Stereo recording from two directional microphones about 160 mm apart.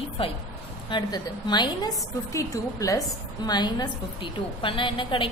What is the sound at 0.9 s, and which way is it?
A woman's voice, 30° left (ahead or behind).